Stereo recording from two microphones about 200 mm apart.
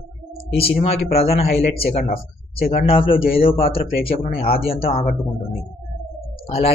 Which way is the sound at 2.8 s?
25° left (ahead or behind).